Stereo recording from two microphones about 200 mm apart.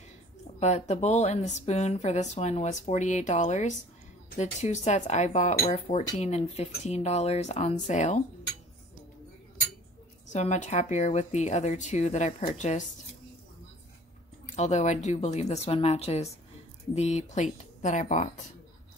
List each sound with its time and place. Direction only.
0.6 s speech: 35° left (ahead or behind)
10.3 s speech: 35° left (ahead or behind)
14.4 s speech: 35° left (ahead or behind)